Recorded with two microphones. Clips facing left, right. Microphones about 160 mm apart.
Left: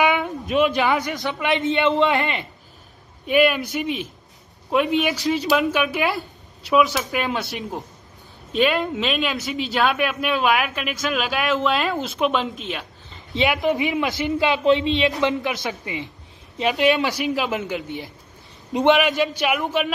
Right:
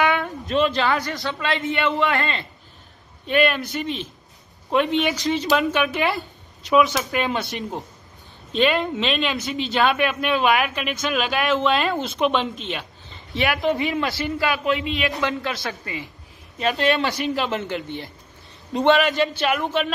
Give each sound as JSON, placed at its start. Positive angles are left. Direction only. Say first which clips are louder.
{"t": 0.0, "sound": "speech", "louder": "left 1 dB", "side_deg": 15}
{"t": 13.3, "sound": "speech", "louder": "left 1 dB", "side_deg": 20}